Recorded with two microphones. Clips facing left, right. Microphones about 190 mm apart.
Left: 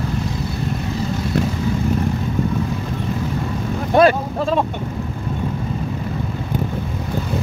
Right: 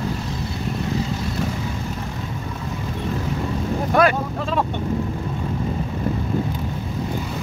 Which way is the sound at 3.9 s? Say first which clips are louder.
Left 5 dB; 30° left (ahead or behind).